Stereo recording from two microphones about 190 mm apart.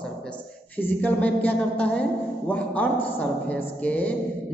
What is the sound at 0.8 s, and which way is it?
A woman's voice, 10° left (ahead or behind).